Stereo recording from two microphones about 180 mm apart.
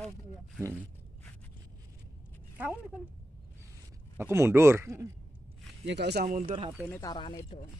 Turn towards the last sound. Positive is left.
turn(degrees=25)  # may be behind; listen again after turning